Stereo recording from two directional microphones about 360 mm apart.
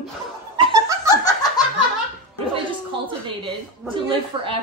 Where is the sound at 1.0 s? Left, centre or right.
Centre.